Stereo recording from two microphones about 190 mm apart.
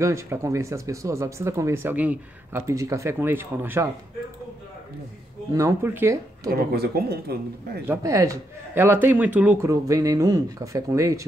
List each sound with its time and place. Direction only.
0.0 s speech: 15° right (ahead or behind)
5.5 s speech: 15° right (ahead or behind)
6.5 s speech: 55° right (ahead or behind)
7.8 s speech: 15° right (ahead or behind)